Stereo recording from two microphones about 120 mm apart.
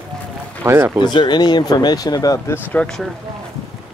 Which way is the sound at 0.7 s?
20° right (ahead or behind).